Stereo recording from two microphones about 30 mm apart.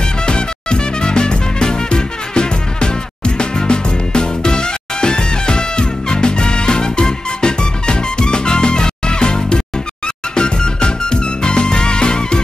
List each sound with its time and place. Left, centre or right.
0.2 s music: left